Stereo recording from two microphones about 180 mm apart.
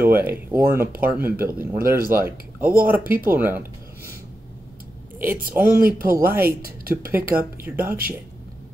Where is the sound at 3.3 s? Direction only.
10° right (ahead or behind).